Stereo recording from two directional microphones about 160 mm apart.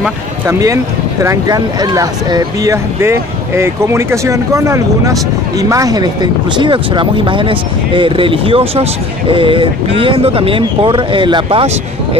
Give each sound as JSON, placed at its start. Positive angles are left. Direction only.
{"t": 0.5, "sound": "speech", "side_deg": -20}